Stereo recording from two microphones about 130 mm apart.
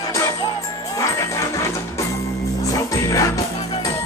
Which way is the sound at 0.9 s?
25° left (ahead or behind).